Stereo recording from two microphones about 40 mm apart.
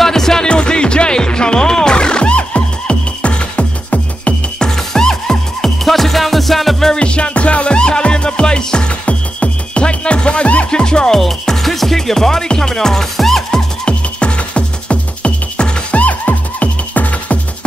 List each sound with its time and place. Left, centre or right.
0.0 s music: centre
0.5 s music: left
4.6 s music: centre
7.0 s music: left
10.7 s music: left
11.1 s music: centre
13.8 s music: left